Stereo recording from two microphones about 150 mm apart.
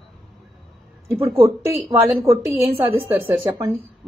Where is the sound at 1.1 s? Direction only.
15° right (ahead or behind).